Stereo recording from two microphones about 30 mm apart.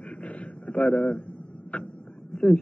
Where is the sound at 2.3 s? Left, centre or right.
Left.